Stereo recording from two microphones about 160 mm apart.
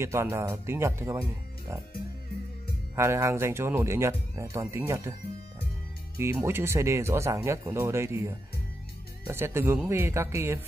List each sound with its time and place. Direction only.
0.0 s speech: 15° right (ahead or behind)
3.0 s speech: 15° right (ahead or behind)
6.4 s speech: 15° right (ahead or behind)